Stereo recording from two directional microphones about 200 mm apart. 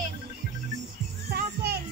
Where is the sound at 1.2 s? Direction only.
50° right (ahead or behind).